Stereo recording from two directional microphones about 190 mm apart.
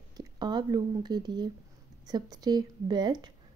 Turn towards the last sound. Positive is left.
turn(degrees=-20)  # may be behind; listen again after turning